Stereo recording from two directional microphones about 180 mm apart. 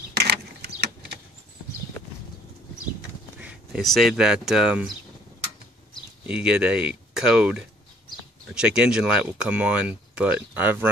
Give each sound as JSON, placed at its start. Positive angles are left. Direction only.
{"t": 0.1, "sound": "a sound", "side_deg": -65}
{"t": 3.3, "sound": "speech", "side_deg": -5}
{"t": 6.2, "sound": "speech", "side_deg": -5}